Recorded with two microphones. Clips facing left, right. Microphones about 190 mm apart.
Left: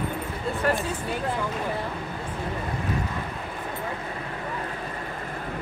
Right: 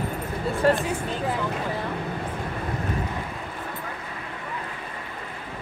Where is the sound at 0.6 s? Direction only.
30° right (ahead or behind).